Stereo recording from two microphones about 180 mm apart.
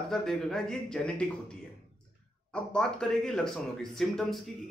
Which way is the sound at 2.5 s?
5° left (ahead or behind).